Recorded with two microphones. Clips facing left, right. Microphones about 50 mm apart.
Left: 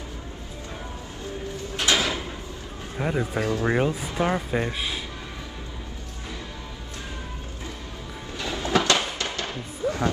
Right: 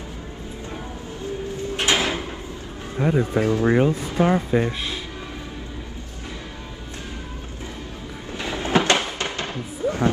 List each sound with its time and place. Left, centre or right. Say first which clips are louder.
1.8 s sliding door: right 2 dB; right
3.0 s speech: right 5 dB; centre
3.3 s speech: right 5 dB; right
3.7 s speech: right 5 dB; centre
4.2 s speech: right 5 dB; centre
4.5 s speech: right 4 dB; centre
8.4 s music: right 3 dB; right